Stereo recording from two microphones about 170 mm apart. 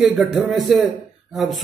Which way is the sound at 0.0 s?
Centre (ahead or behind).